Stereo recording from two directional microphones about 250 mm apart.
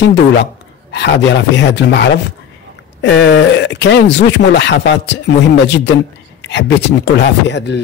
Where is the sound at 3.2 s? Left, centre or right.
Left.